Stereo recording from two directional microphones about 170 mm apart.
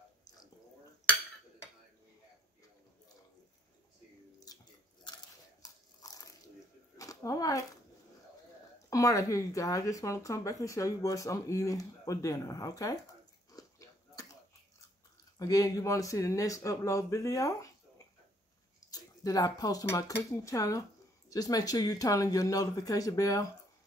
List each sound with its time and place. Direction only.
0.2 s a sound: 20° left (ahead or behind)
4.5 s chewing: 20° left (ahead or behind)
5.0 s biting: 25° left (ahead or behind)
7.0 s a sound: 20° left (ahead or behind)
8.9 s speech: 20° left (ahead or behind)
13.5 s dog: 20° left (ahead or behind)
15.3 s speech: 20° left (ahead or behind)
18.9 s speech: 20° left (ahead or behind)